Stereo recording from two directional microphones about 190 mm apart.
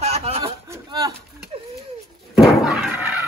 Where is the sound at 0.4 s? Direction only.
20° right (ahead or behind).